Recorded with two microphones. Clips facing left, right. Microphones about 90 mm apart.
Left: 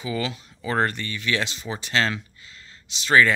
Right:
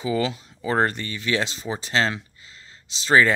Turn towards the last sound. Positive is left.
turn(degrees=-30)  # may be behind; listen again after turning